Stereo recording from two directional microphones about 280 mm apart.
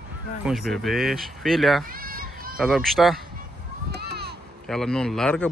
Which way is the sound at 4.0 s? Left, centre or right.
Right.